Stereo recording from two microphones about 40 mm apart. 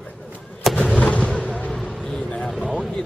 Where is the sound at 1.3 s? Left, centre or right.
Left.